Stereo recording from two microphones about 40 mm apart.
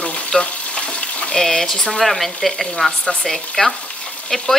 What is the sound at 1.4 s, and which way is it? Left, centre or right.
Speech, centre.